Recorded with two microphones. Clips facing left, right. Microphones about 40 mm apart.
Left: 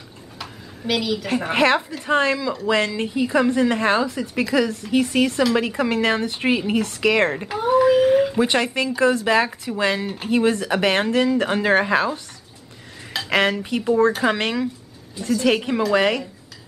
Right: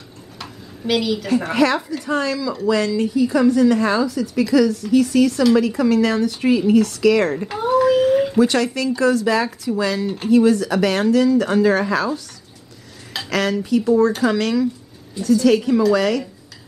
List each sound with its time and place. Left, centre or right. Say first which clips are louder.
0.4 s a sound: right 2 dB; centre
1.5 s a woman's voice: left 2 dB; left
7.4 s a child's voice: even; centre
7.7 s a sound: even; centre
8.4 s a woman's voice: right 3 dB; left
13.3 s a woman's voice: right 1 dB; left